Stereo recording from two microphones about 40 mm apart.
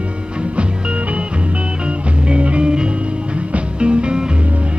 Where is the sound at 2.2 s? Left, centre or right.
Right.